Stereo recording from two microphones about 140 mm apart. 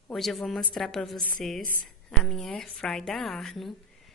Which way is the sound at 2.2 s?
5° left (ahead or behind).